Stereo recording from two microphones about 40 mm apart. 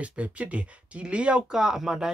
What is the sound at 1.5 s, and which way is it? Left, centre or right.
Speech, centre.